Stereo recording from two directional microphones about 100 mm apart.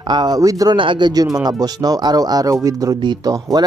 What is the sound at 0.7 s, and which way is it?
Speech, 50° right (ahead or behind).